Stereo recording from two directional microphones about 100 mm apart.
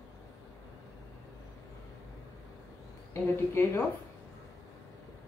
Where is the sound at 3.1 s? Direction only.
25° left (ahead or behind).